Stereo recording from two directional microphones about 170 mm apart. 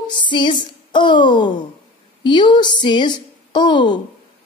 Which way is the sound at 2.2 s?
30° left (ahead or behind).